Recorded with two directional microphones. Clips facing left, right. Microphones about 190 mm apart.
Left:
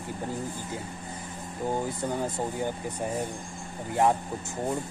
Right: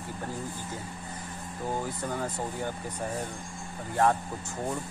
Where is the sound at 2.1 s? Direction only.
15° left (ahead or behind).